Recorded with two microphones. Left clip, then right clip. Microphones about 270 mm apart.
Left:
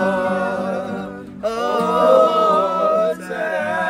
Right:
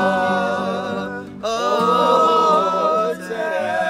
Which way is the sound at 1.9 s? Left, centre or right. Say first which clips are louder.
Left 5 dB; right.